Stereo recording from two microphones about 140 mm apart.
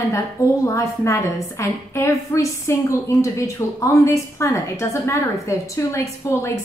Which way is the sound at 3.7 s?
20° left (ahead or behind).